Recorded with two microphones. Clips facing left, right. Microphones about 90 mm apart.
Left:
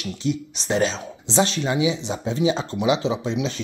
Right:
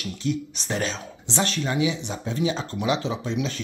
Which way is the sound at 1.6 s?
15° left (ahead or behind).